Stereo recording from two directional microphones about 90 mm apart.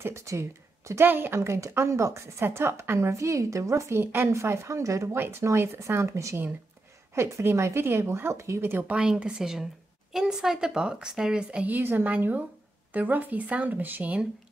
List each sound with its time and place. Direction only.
0.0 s speech: 30° right (ahead or behind)